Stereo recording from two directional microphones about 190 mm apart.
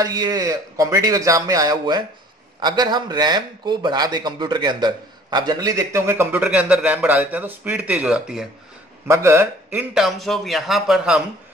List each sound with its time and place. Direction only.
0.0 s speech: 20° right (ahead or behind)
9.0 s a man's voice: 15° right (ahead or behind)